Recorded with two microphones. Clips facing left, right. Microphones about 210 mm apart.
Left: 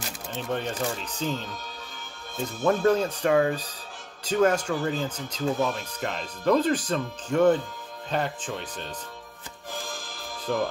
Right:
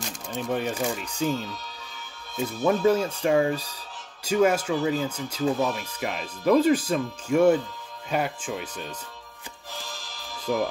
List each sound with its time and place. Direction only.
0.5 s speech: 10° right (ahead or behind)
9.8 s music: 50° left (ahead or behind)